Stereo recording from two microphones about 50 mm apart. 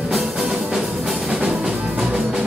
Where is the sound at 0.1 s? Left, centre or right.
Centre.